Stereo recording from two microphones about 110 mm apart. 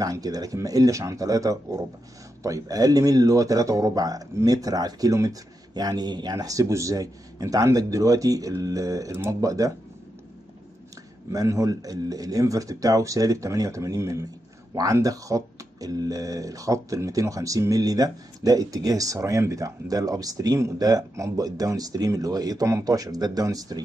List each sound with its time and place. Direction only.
0.0 s speech: 35° right (ahead or behind)
11.3 s speech: 30° right (ahead or behind)